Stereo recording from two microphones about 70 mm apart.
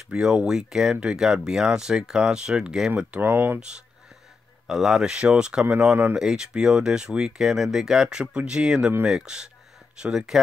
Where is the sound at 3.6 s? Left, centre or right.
Centre.